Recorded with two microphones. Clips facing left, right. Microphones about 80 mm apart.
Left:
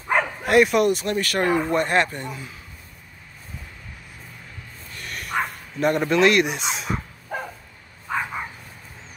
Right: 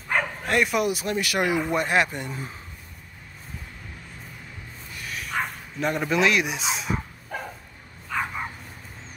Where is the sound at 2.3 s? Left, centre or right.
Right.